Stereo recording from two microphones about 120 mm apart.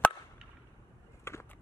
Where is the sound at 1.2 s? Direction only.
20° left (ahead or behind).